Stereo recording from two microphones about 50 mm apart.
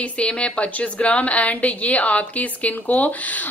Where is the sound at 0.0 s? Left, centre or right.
Left.